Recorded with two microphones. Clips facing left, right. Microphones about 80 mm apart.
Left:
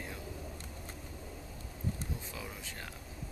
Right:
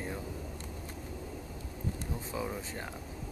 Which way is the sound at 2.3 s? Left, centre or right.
Right.